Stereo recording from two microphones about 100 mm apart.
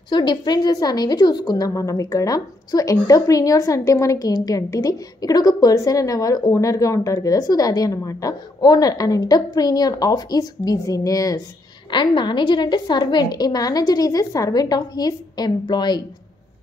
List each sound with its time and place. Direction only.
0.1 s a woman's voice: 50° left (ahead or behind)
11.9 s a woman's voice: 50° left (ahead or behind)